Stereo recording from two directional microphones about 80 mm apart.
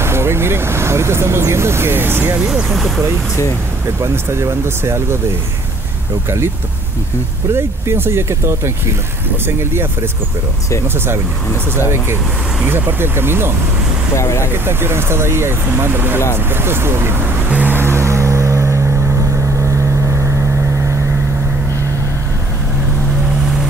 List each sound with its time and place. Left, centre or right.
0.0 s speech: right
2.4 s speech: centre
4.0 s speech: right
7.5 s speech: right
12.6 s speech: right
14.1 s speech: left
14.5 s speech: right
17.5 s vehicle: centre